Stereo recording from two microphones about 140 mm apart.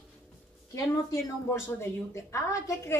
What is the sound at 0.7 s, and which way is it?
A woman's voice, 20° left (ahead or behind).